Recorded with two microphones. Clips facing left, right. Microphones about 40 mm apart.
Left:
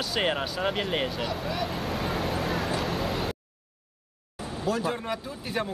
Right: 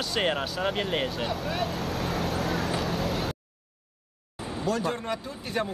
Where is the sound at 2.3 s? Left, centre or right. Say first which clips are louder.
Even; centre.